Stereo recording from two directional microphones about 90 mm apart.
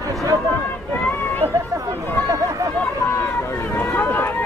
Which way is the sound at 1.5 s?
35° right (ahead or behind).